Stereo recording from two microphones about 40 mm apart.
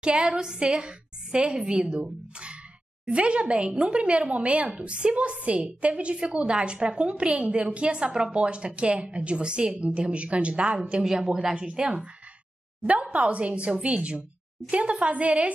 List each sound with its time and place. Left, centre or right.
0.0 s a woman's voice: right
13.1 s a woman's voice: right